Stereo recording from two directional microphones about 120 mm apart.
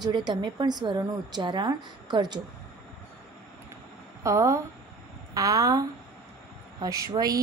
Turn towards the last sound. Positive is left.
turn(degrees=-30)  # may be behind; listen again after turning